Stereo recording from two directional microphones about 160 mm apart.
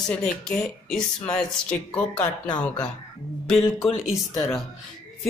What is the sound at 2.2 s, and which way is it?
Speech, 25° left (ahead or behind).